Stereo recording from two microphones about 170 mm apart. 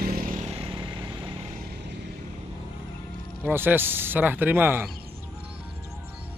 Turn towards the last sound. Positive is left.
turn(degrees=-10)  # may be behind; listen again after turning